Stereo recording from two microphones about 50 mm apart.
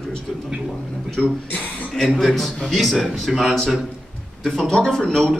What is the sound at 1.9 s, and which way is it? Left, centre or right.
A man's voice, centre.